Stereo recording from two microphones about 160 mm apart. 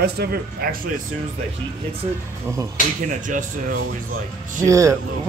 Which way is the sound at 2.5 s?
20° right (ahead or behind).